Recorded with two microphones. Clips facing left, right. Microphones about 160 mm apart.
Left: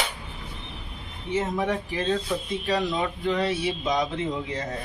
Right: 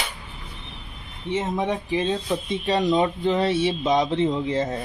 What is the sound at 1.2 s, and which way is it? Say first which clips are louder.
Speech: right 1 dB; 25° right (ahead or behind).